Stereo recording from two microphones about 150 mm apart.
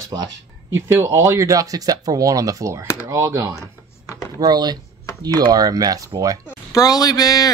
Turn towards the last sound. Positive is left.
turn(degrees=25)  # may be behind; listen again after turning